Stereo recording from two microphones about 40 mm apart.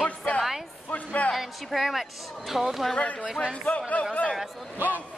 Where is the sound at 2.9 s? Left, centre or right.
Left.